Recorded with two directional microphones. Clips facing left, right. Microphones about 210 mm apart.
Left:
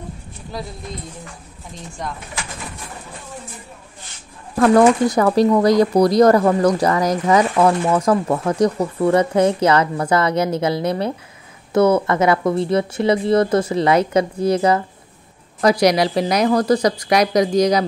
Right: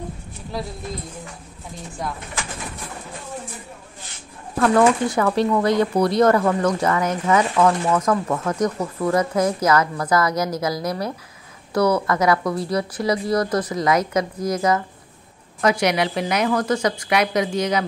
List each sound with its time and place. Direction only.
0.5 s speech: centre (ahead or behind)
2.0 s speech: 5° right (ahead or behind)
4.6 s a woman's voice: 40° left (ahead or behind)